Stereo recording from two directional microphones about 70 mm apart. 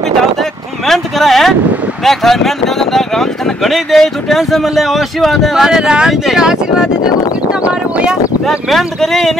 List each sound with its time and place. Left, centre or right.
0.4 s a sound: centre
2.0 s speech: centre
8.1 s speech: centre